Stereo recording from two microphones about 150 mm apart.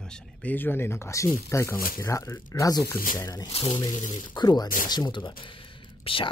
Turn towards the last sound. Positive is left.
turn(degrees=35)  # may be behind; listen again after turning